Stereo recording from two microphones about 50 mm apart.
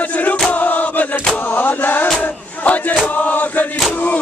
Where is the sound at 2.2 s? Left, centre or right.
Left.